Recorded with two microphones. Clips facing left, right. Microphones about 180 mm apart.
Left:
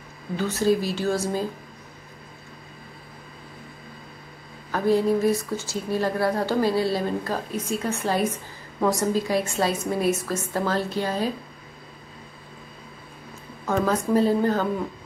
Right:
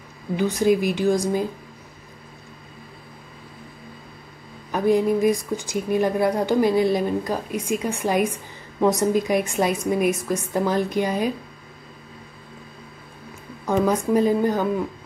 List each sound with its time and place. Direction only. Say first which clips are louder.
0.4 s speech: right 3 dB; 15° right (ahead or behind)
4.6 s speech: right 2 dB; 15° right (ahead or behind)
13.8 s speech: right 1 dB; 15° right (ahead or behind)